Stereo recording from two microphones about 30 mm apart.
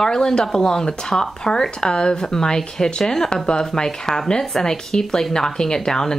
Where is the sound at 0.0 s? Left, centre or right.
Centre.